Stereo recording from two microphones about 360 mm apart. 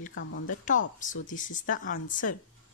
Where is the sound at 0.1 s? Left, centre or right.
Left.